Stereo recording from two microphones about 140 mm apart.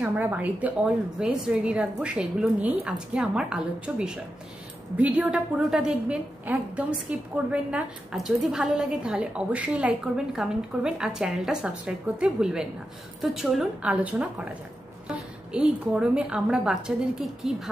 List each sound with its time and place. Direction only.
0.0 s a woman's voice: 10° right (ahead or behind)